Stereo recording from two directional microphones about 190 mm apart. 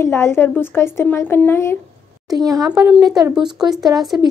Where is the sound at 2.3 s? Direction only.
20° right (ahead or behind).